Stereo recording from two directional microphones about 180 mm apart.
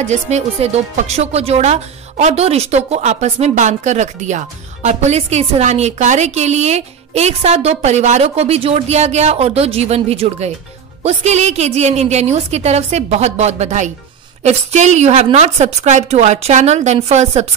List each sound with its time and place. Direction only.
0.0 s speech: 40° right (ahead or behind)